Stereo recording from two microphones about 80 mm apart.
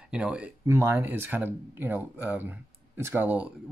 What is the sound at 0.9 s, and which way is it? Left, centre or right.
Speech, right.